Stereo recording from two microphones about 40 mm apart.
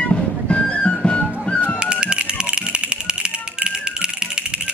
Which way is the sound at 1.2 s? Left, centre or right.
Left.